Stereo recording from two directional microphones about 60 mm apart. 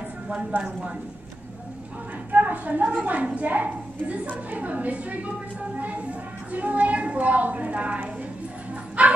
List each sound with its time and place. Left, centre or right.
0.5 s speech: right
2.3 s a woman's voice: right